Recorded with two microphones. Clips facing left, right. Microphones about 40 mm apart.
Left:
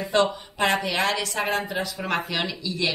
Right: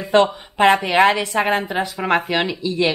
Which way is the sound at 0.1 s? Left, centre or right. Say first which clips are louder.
Right 7 dB; right.